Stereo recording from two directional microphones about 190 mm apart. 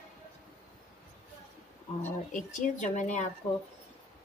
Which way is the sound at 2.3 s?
40° left (ahead or behind).